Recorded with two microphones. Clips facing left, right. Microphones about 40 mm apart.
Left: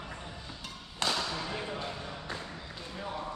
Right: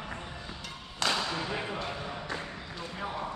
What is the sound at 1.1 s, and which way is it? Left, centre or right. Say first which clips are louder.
Thump: right 3 dB; right.